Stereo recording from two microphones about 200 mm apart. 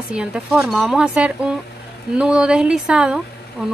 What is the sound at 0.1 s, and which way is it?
A woman's voice, 5° right (ahead or behind).